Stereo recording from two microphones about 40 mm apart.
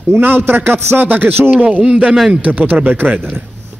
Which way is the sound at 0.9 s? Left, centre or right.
Right.